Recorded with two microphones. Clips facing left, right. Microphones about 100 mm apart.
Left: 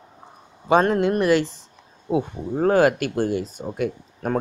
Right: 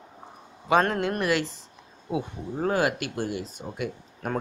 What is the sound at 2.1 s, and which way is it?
Speech, 45° left (ahead or behind).